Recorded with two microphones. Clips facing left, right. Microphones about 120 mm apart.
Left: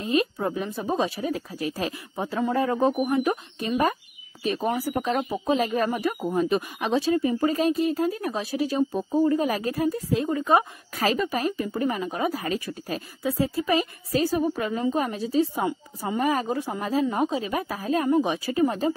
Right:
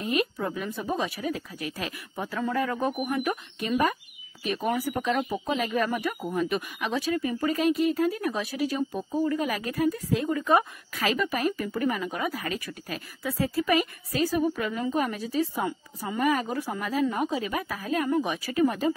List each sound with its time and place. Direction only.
0.0 s a woman's voice: 30° left (ahead or behind)